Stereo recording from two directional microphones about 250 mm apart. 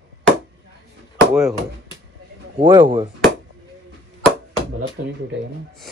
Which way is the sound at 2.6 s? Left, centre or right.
Centre.